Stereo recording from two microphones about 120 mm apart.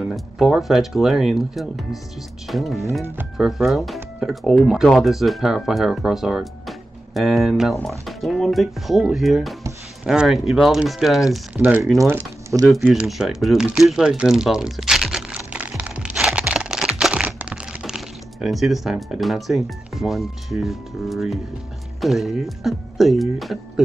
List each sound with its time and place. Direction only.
0.0 s speech: centre (ahead or behind)
11.5 s speech: 15° right (ahead or behind)
12.6 s speech: centre (ahead or behind)